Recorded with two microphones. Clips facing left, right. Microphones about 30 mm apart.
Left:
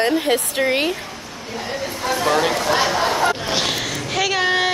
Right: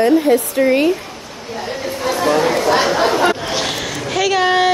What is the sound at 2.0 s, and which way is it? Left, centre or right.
Chatter, centre.